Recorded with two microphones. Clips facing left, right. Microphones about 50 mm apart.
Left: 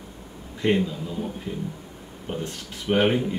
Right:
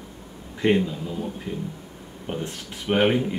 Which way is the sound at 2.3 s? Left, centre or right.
Centre.